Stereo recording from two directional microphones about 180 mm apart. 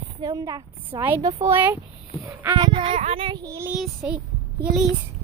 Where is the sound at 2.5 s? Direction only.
25° right (ahead or behind).